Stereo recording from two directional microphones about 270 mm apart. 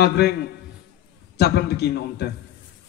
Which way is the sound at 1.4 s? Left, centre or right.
Left.